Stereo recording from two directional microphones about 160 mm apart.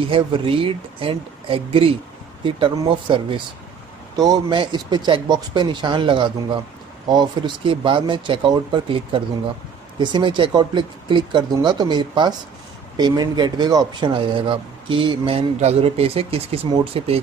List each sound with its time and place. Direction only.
0.1 s speech: 35° right (ahead or behind)